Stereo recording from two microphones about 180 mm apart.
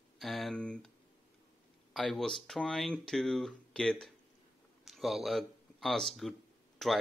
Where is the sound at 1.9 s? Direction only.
Centre (ahead or behind).